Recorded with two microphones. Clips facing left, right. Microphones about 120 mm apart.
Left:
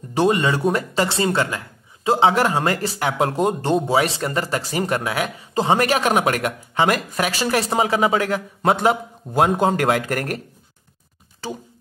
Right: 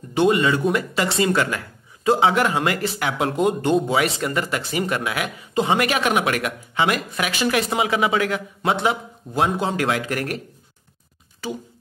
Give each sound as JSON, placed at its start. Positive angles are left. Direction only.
{"t": 0.1, "sound": "speech", "side_deg": 35}
{"t": 11.4, "sound": "speech", "side_deg": 30}